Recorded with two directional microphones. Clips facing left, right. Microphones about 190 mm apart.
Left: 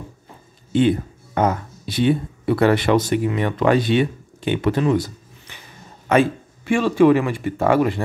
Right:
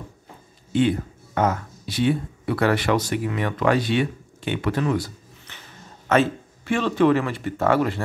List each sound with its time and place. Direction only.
0.7 s speech: 20° left (ahead or behind)